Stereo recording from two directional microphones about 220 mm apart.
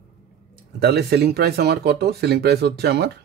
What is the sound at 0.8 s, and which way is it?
A man's voice, 45° right (ahead or behind).